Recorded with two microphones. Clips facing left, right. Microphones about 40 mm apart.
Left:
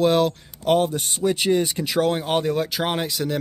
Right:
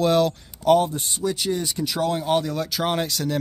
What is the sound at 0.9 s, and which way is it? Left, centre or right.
A man's voice, left.